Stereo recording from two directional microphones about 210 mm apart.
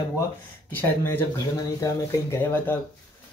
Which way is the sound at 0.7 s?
10° left (ahead or behind).